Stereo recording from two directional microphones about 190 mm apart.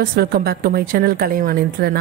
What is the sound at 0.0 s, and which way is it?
A woman's voice, 50° right (ahead or behind).